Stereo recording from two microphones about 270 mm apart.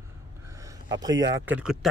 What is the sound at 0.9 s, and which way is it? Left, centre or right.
Speech, centre.